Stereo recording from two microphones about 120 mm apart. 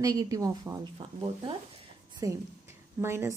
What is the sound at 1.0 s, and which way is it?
Speech, 40° right (ahead or behind).